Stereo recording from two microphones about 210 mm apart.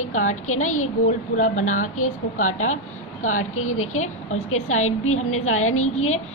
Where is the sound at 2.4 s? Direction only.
85° left.